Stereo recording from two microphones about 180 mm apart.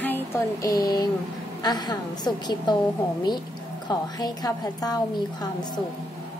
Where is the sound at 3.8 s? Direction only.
20° left (ahead or behind).